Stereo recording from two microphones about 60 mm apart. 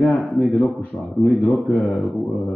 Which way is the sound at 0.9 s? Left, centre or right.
Left.